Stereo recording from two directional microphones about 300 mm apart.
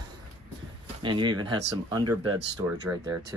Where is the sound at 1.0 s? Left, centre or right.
Centre.